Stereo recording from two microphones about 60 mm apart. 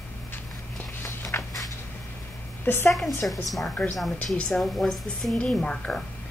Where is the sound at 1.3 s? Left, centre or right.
Left.